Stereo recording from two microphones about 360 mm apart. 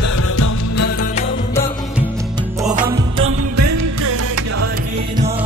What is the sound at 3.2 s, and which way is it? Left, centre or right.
Music, right.